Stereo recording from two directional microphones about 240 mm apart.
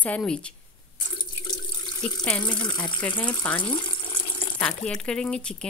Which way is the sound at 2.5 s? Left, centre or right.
Centre.